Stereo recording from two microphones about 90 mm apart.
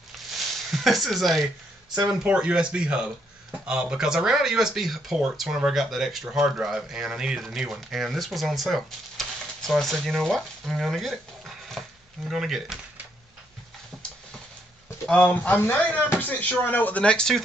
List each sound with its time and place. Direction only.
0.7 s speech: centre (ahead or behind)
2.0 s speech: 10° right (ahead or behind)
15.0 s speech: 15° left (ahead or behind)